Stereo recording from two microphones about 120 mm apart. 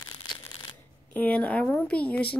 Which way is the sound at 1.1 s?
5° left (ahead or behind).